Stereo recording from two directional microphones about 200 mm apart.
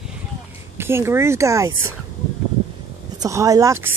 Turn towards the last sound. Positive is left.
turn(degrees=-15)  # may be behind; listen again after turning